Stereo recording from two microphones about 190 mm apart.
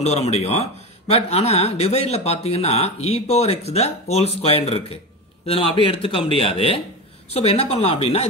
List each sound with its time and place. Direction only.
0.0 s a man's voice: 35° left (ahead or behind)